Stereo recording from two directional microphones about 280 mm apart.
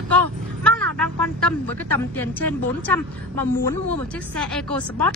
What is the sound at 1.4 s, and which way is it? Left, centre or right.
Speech, centre.